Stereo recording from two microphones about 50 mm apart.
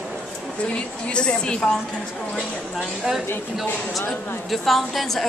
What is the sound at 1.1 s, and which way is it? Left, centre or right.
Speech, centre.